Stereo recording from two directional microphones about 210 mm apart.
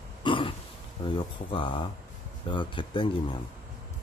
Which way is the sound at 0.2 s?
25° left (ahead or behind).